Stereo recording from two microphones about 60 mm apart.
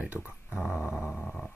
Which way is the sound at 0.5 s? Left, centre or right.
Centre.